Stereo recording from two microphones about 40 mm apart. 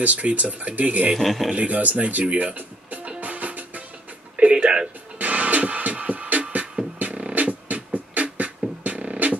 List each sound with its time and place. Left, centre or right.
0.0 s speech: right
1.1 s speech: centre
1.5 s speech: right
3.2 s music: right
4.6 s music: right
5.2 s music: right